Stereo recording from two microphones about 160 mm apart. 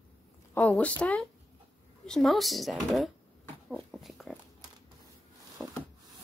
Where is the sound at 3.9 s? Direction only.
Centre (ahead or behind).